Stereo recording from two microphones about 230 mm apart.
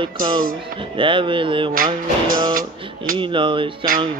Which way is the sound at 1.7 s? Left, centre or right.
Right.